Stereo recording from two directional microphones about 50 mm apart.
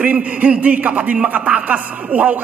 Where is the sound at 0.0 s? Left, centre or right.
Right.